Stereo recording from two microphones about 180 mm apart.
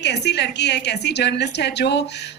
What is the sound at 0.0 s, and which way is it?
A woman's voice, 70° left (ahead or behind).